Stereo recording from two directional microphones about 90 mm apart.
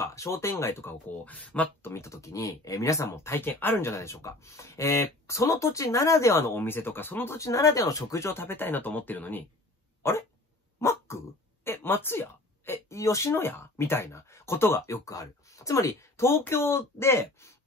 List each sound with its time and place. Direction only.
0.0 s speech: 30° left (ahead or behind); by 1.7 s 15° left (ahead or behind)
1.8 s speech: 30° left (ahead or behind)
15.0 s speech: 40° left (ahead or behind)